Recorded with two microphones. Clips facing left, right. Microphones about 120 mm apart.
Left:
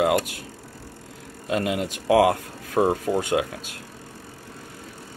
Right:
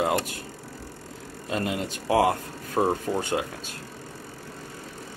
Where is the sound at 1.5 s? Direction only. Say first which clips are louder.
Left 4 dB; 5° left (ahead or behind).